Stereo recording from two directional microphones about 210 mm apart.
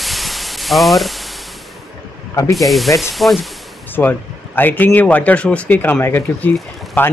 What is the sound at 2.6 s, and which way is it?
Speech, centre (ahead or behind).